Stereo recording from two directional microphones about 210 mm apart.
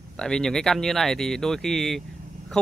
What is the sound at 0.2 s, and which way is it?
Speech, 5° left (ahead or behind).